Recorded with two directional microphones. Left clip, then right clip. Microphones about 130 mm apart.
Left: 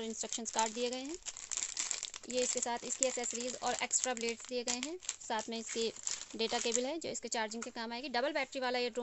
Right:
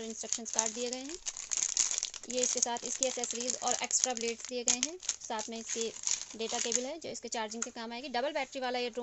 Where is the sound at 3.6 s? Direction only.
30° left (ahead or behind).